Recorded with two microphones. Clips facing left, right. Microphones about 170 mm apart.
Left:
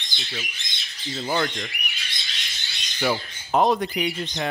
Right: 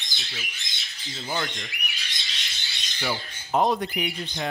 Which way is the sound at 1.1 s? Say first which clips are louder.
Left 5 dB; 60° left (ahead or behind).